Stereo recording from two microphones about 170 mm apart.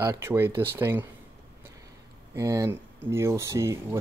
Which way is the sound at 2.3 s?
20° right (ahead or behind).